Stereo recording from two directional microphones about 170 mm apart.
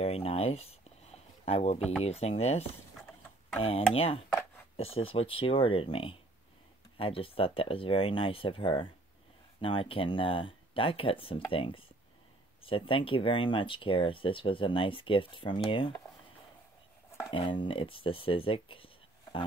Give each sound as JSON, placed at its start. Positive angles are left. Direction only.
{"t": 0.0, "sound": "a sound", "side_deg": 35}
{"t": 2.0, "sound": "speech", "side_deg": 35}
{"t": 3.6, "sound": "speech", "side_deg": 35}
{"t": 17.3, "sound": "speech", "side_deg": 30}